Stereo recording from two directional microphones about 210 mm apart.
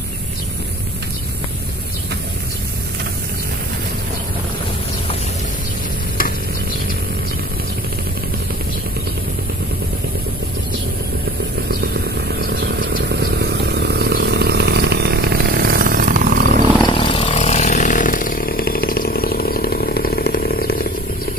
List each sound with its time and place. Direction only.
11.7 s vehicle: 50° right (ahead or behind)
16.8 s chainsaw: 25° left (ahead or behind); by 20.9 s 45° left (ahead or behind)